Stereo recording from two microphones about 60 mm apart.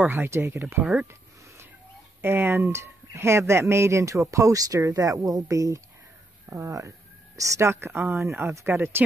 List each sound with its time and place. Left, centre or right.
0.1 s speech: right
2.2 s speech: right
7.7 s speech: right